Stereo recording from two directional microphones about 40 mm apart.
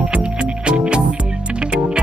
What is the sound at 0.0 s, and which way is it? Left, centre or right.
Music, right.